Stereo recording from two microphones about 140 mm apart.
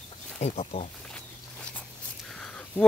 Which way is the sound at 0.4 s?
55° left (ahead or behind).